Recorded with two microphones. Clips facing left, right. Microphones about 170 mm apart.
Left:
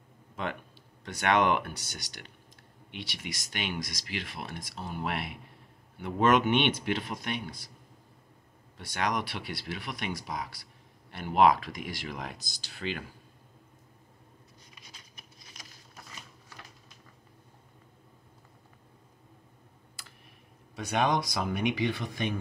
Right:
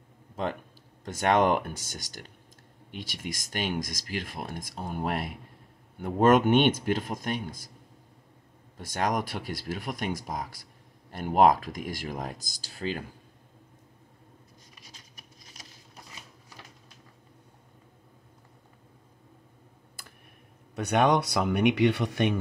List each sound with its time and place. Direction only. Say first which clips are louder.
1.0 s speech: right 2 dB; 45° right (ahead or behind)
8.7 s speech: right 3 dB; 45° right (ahead or behind)
14.8 s patter: right 1 dB; 40° right (ahead or behind)
20.7 s speech: right 5 dB; 60° right (ahead or behind)